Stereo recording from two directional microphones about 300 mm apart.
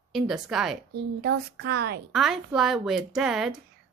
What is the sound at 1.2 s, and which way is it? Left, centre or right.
Child singing, right.